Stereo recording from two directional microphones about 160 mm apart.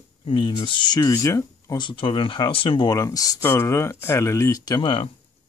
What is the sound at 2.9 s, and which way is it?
Speech, 20° left (ahead or behind).